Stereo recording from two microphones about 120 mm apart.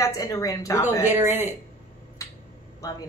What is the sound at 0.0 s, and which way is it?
Speech, 30° left (ahead or behind).